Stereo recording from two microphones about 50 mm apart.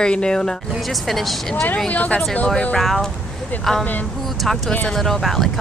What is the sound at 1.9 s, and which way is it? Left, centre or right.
Speech, left.